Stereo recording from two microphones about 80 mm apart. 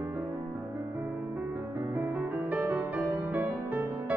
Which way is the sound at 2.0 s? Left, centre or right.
Right.